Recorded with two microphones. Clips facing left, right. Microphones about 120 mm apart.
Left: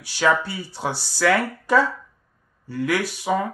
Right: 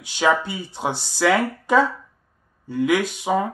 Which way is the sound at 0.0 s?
20° right (ahead or behind).